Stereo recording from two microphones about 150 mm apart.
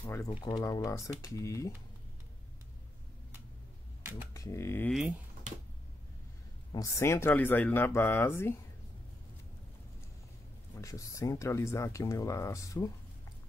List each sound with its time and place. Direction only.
0.0 s speech: 15° left (ahead or behind)
4.3 s speech: 20° left (ahead or behind)
6.7 s speech: 20° left (ahead or behind)
10.8 s speech: 20° left (ahead or behind)